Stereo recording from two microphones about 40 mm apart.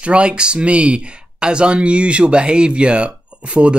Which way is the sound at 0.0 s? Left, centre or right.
Right.